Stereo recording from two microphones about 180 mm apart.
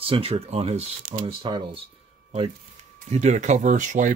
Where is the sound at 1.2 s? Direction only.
30° right (ahead or behind).